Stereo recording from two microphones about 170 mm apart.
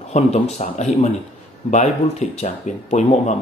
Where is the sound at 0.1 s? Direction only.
40° left (ahead or behind).